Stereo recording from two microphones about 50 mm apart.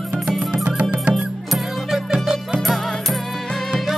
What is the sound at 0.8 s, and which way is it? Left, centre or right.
Music, right.